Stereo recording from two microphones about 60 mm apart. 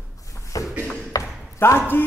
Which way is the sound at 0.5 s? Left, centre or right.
Left.